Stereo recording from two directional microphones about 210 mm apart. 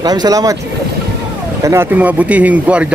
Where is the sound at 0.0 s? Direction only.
20° right (ahead or behind).